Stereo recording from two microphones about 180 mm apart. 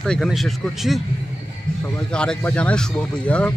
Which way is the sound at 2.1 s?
5° left (ahead or behind).